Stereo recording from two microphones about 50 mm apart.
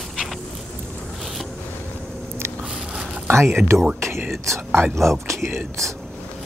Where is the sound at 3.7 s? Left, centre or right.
Right.